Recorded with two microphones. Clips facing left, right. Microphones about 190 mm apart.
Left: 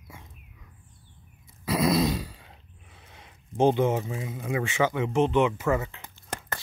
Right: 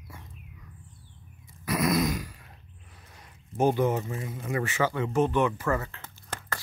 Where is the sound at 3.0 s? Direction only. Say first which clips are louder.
Left 2 dB; 25° left (ahead or behind).